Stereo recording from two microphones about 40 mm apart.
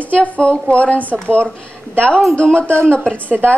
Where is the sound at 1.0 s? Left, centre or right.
Right.